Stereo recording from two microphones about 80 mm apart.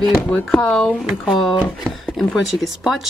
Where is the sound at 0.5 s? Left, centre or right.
Centre.